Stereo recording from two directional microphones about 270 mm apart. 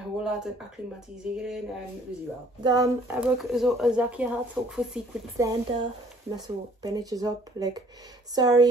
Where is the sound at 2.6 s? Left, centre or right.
Centre.